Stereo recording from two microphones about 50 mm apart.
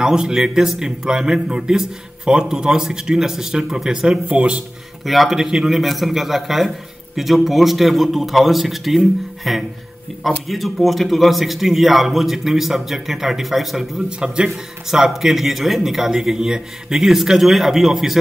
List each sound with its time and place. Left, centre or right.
0.0 s a man's voice: centre
4.3 s speech: right
5.0 s a man's voice: centre